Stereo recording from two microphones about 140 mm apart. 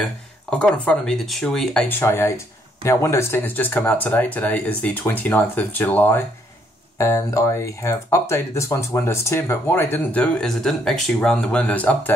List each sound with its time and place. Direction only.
0.5 s speech: 10° left (ahead or behind)